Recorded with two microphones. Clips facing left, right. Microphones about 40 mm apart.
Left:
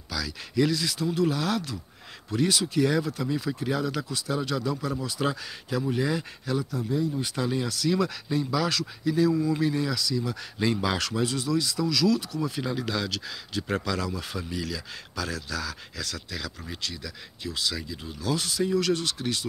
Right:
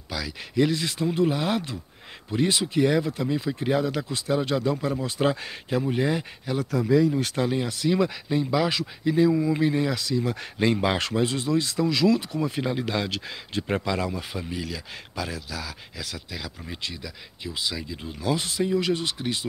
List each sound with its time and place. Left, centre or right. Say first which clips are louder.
0.1 s speech: right 1 dB; right
6.7 s speech: right 7 dB; right
7.4 s speech: right 2 dB; right